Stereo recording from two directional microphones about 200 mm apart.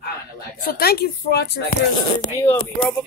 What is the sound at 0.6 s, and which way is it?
Speech, 50° left (ahead or behind).